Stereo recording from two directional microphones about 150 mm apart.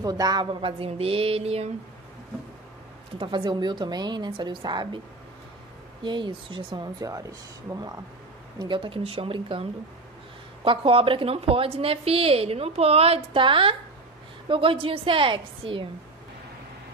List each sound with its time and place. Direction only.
0.0 s a woman's voice: 25° right (ahead or behind); by 1.7 s 45° right (ahead or behind)
3.2 s a woman's voice: 35° right (ahead or behind)
6.0 s a woman's voice: 30° right (ahead or behind)